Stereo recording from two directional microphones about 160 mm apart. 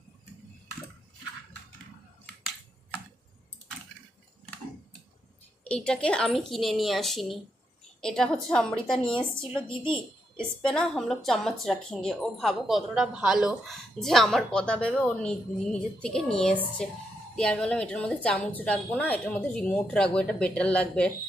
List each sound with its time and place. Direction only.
5.6 s a woman's voice: 5° left (ahead or behind)
9.5 s a woman's voice: 30° left (ahead or behind)
10.6 s a woman's voice: 5° left (ahead or behind)